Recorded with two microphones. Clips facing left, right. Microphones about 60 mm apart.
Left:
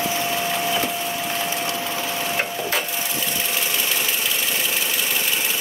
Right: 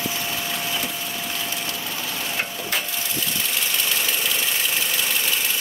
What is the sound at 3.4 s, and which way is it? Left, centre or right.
Engine, centre.